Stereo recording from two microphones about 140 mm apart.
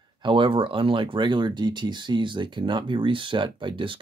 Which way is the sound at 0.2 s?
40° right (ahead or behind).